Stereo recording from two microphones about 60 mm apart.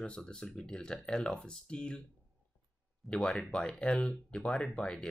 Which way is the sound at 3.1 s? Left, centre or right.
Centre.